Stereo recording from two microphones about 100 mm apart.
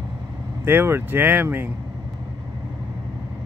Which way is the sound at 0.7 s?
25° right (ahead or behind).